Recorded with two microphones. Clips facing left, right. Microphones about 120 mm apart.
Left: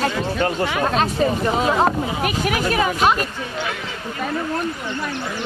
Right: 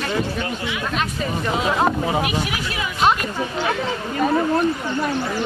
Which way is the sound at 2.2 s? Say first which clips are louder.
Left 4 dB; 45° left (ahead or behind).